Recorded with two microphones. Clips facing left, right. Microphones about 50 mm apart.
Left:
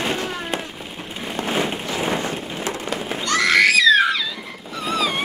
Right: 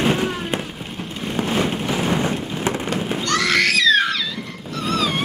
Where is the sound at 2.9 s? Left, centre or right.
Centre.